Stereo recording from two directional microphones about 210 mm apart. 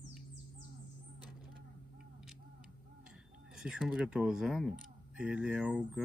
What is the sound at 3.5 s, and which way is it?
Speech, 5° right (ahead or behind).